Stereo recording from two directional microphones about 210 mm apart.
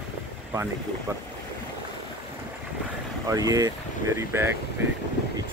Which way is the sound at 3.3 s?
15° right (ahead or behind).